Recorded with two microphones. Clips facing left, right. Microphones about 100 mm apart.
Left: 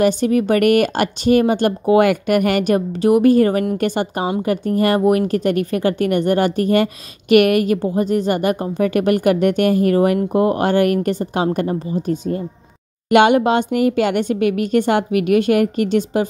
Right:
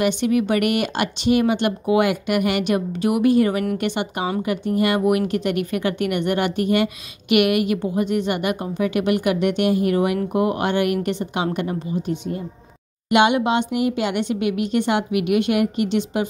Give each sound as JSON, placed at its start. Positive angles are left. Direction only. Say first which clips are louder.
{"t": 0.0, "sound": "speech", "louder": "left 4 dB", "side_deg": 40}